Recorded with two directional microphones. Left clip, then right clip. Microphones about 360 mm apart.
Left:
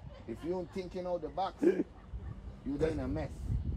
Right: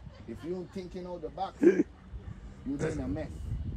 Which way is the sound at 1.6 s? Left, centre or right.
Right.